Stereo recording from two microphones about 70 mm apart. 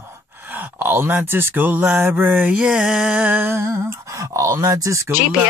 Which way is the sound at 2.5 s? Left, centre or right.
Centre.